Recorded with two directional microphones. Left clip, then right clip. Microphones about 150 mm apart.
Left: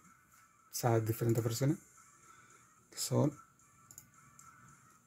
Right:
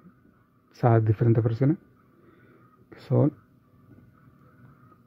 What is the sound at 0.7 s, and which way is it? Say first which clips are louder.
Speech: right 10 dB; 60° right (ahead or behind).